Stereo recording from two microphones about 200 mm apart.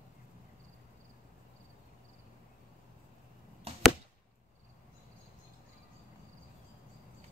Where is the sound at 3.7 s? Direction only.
30° right (ahead or behind).